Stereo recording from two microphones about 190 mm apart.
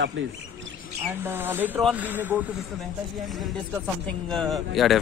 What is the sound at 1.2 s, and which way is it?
A man's voice, 10° right (ahead or behind).